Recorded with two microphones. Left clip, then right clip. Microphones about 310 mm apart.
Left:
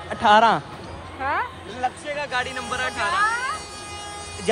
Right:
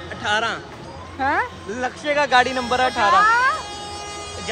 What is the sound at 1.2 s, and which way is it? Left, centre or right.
Speech, right.